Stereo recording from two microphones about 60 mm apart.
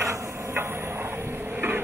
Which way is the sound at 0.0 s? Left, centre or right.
Right.